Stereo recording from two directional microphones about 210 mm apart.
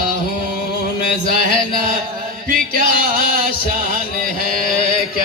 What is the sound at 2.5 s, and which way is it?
Music, 40° right (ahead or behind).